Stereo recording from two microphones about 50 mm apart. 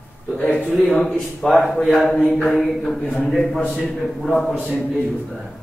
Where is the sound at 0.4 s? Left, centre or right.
Left.